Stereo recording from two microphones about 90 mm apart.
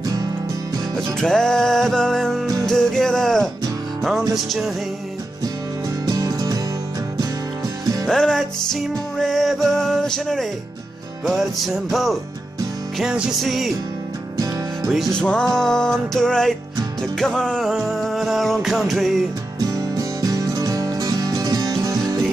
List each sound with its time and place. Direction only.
0.0 s music: 45° right (ahead or behind)
0.9 s music: 5° left (ahead or behind)
6.0 s music: 45° right (ahead or behind)
8.1 s music: 5° left (ahead or behind)
14.3 s music: 45° right (ahead or behind)
14.9 s music: centre (ahead or behind)
17.6 s music: 5° right (ahead or behind)
19.6 s music: 40° right (ahead or behind)